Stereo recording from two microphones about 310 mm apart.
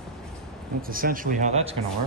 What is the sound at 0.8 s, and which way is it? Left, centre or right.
Speech, right.